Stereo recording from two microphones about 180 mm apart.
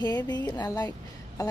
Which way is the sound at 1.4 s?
20° left (ahead or behind).